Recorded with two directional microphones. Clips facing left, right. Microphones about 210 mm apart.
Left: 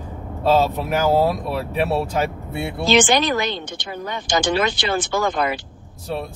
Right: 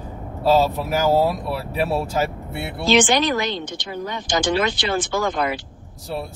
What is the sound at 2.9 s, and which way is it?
Speech, 55° left (ahead or behind).